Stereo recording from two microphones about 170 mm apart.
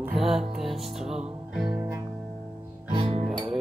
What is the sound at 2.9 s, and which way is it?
Music, 30° right (ahead or behind).